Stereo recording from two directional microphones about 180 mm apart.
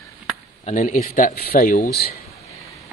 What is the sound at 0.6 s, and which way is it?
A man's voice, 45° left (ahead or behind).